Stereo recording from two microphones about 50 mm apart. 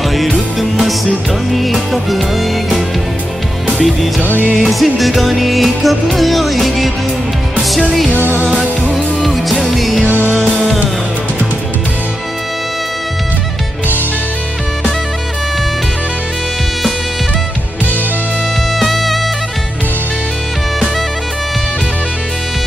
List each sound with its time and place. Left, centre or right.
0.1 s music: centre
4.2 s music: right
4.6 s music: centre
8.9 s music: centre
18.8 s music: centre